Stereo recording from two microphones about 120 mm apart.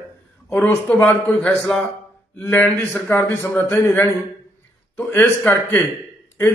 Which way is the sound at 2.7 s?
5° left (ahead or behind).